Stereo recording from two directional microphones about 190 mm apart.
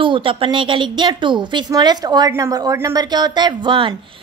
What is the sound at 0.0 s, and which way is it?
A woman's voice, 25° right (ahead or behind).